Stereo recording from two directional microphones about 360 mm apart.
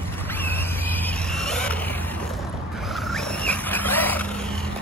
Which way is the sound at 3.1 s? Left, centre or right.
Centre.